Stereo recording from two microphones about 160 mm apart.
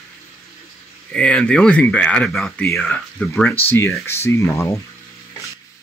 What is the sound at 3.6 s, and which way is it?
Speech, 15° left (ahead or behind).